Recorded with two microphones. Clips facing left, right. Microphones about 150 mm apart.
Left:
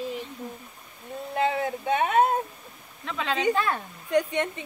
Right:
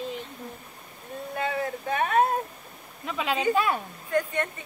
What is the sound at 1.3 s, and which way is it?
A woman's voice, 25° left (ahead or behind).